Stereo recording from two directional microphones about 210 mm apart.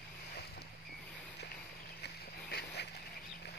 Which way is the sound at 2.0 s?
50° left (ahead or behind).